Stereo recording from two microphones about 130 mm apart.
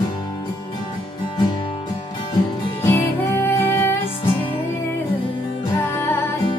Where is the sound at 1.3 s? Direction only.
35° left (ahead or behind).